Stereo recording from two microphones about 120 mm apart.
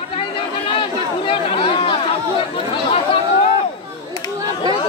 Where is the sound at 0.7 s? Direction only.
45° left (ahead or behind).